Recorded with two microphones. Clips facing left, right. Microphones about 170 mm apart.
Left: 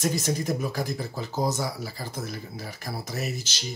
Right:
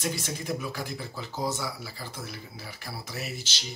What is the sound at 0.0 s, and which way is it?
Speech, 40° left (ahead or behind).